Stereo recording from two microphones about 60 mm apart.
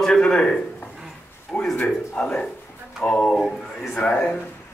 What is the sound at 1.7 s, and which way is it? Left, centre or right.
Speech, left.